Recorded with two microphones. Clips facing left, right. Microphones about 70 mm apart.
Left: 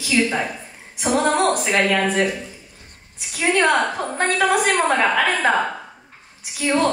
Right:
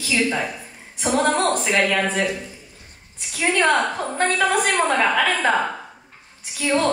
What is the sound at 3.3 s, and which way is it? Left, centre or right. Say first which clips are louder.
A woman's voice: left 1 dB; centre.